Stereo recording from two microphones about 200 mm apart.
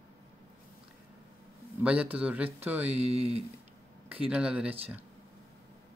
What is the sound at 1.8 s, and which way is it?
Speech, 5° right (ahead or behind).